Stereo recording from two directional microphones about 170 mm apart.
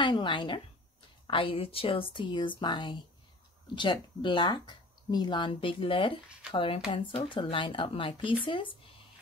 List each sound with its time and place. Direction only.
0.0 s speech: 30° left (ahead or behind)